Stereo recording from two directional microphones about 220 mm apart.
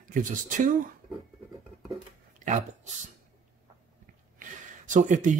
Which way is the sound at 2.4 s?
30° right (ahead or behind).